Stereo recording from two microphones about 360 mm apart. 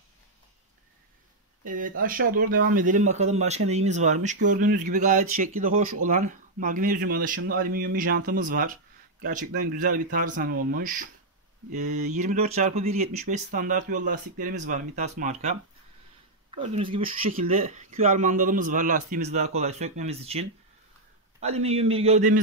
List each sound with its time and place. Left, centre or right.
1.6 s a man's voice: right